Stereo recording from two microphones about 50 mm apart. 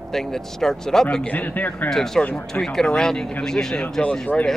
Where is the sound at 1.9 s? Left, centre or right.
Centre.